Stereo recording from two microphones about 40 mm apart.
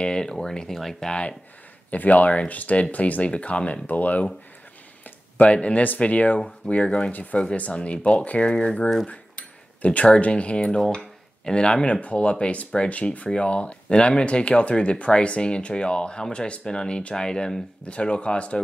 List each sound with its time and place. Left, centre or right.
0.0 s speech: centre
1.9 s speech: left
3.8 s speech: left
5.0 s a sound: left
5.9 s speech: left
7.1 s speech: left
7.5 s speech: left; by 17.6 s centre
17.8 s speech: left